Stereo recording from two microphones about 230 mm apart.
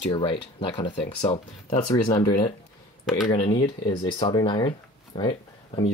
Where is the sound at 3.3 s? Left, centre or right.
Left.